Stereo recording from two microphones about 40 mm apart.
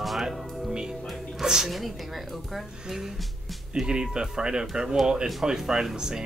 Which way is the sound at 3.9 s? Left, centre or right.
Centre.